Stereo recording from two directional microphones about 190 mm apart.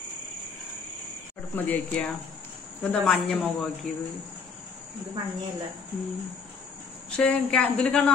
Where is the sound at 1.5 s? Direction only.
10° left (ahead or behind).